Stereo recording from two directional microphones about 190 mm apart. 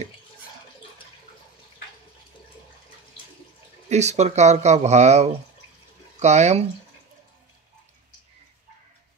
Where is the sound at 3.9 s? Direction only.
35° right (ahead or behind).